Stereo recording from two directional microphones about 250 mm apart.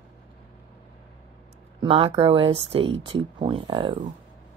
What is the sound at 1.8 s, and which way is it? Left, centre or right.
Speech, centre.